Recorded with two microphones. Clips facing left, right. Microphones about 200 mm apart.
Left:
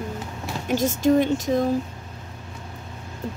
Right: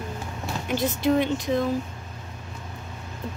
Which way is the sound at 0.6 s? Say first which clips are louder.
Left 4 dB; 45° left (ahead or behind).